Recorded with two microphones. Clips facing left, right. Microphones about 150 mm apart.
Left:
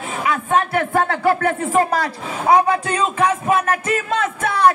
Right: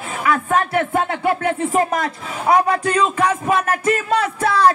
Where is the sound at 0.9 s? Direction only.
35° left (ahead or behind).